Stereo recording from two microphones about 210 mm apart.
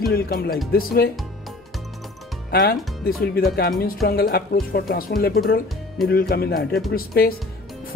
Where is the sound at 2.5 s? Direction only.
45° left (ahead or behind).